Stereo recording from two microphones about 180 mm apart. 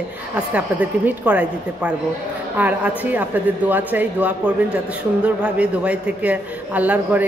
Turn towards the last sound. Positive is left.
turn(degrees=-10)  # may be behind; listen again after turning